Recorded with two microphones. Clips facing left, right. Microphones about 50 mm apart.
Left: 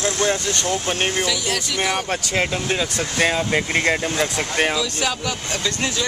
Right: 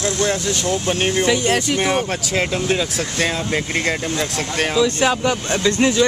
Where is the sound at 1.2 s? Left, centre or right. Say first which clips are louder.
Right 6 dB; right.